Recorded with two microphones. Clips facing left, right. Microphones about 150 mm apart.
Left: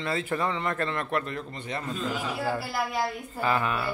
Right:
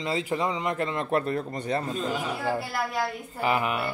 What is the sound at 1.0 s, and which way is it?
Speech, 35° right (ahead or behind).